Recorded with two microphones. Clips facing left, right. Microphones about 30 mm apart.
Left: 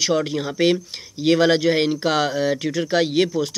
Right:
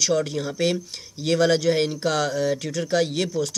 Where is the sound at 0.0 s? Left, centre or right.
Left.